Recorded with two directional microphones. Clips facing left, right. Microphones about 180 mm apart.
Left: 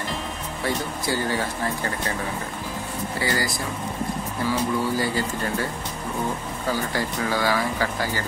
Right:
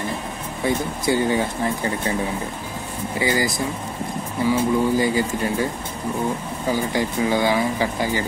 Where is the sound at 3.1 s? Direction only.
20° right (ahead or behind).